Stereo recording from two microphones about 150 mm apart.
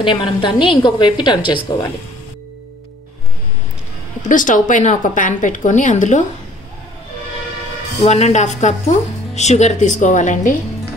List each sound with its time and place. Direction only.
0.0 s a woman's voice: 35° left (ahead or behind)
4.2 s a woman's voice: 60° left (ahead or behind)
8.0 s speech: 50° left (ahead or behind)